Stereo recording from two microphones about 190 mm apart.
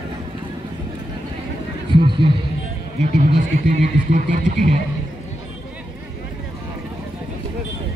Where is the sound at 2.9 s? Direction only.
45° right (ahead or behind).